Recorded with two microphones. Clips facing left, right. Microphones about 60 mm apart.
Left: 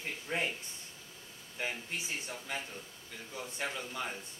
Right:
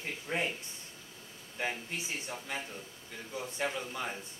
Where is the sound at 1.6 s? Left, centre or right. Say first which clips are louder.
Right 2 dB; centre.